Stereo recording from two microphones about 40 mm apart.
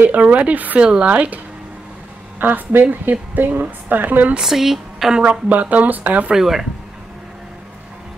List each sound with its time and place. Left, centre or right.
0.0 s speech: right
0.7 s speech: right
1.0 s speech: right
2.3 s a woman's voice: right
4.4 s speech: centre
5.5 s a woman's voice: right
6.3 s speech: centre